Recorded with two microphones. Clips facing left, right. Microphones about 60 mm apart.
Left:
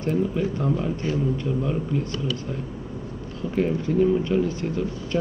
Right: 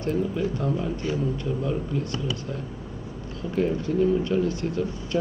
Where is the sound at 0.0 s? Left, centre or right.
Left.